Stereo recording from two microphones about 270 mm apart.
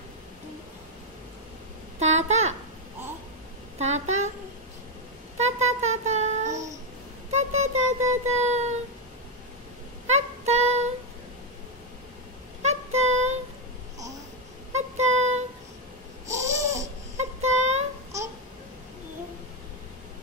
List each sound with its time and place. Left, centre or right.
2.0 s child singing: right
3.7 s a woman's voice: right
5.4 s child singing: right
10.0 s child singing: right
12.6 s child singing: right
14.7 s child singing: right
16.3 s babbling: centre
17.2 s a sound: right